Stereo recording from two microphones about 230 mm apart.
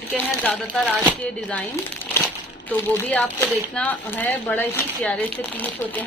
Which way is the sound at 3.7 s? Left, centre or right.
Centre.